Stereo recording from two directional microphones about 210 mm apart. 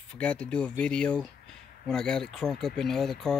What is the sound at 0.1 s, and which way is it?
Speech, 5° left (ahead or behind).